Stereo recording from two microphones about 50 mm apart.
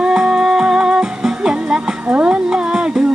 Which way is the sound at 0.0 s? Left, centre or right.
Centre.